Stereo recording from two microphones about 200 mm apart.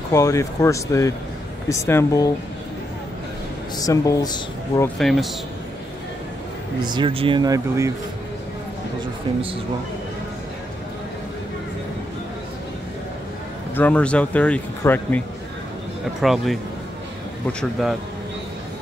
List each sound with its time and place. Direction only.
0.1 s speech: 15° left (ahead or behind)
3.7 s speech: 15° left (ahead or behind)
4.9 s speech: centre (ahead or behind)
6.8 s speech: 25° right (ahead or behind)
13.7 s speech: 5° left (ahead or behind)
16.2 s speech: centre (ahead or behind)